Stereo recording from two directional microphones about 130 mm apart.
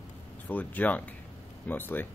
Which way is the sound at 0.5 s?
15° left (ahead or behind).